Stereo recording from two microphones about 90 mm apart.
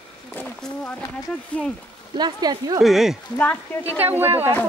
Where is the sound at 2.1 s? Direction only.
50° right (ahead or behind).